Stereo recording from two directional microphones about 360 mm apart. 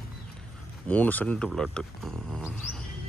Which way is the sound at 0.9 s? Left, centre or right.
Centre.